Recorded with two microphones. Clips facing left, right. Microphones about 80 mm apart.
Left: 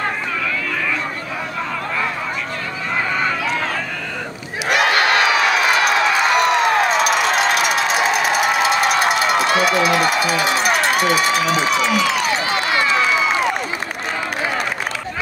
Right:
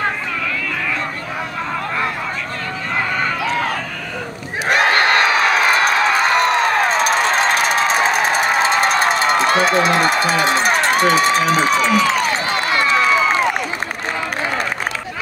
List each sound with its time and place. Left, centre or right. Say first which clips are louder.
4.6 s crowd: right 1 dB; right